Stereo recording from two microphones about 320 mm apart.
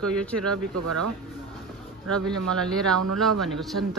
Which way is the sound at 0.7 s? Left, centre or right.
Right.